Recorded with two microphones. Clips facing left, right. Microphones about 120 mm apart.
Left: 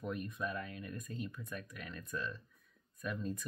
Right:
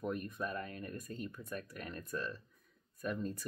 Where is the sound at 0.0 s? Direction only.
45° right (ahead or behind).